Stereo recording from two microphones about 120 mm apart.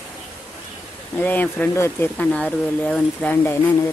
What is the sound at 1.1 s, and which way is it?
Speech, 15° left (ahead or behind).